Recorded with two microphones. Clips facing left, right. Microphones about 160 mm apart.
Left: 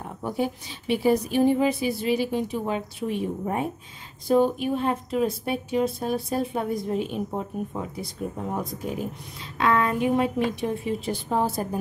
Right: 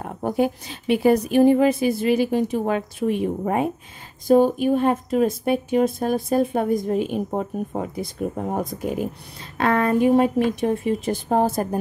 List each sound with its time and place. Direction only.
0.0 s a woman's voice: 50° right (ahead or behind)
3.4 s speech: 80° right
4.3 s a woman's voice: 45° right (ahead or behind)